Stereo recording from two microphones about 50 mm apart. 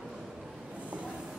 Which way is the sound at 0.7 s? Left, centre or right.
Right.